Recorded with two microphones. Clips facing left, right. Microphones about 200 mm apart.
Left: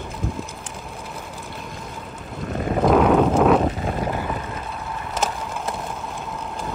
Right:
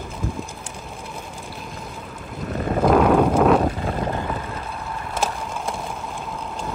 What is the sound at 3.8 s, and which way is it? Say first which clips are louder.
Vehicle: even; 20° left (ahead or behind).